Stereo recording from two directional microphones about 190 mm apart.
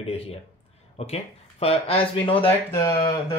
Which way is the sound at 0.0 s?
30° left (ahead or behind).